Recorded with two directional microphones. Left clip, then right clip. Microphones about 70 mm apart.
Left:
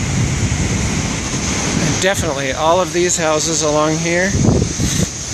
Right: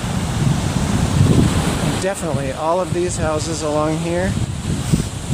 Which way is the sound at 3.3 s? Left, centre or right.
Left.